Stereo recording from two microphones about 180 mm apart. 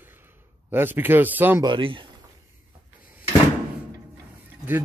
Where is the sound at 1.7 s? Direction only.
25° right (ahead or behind).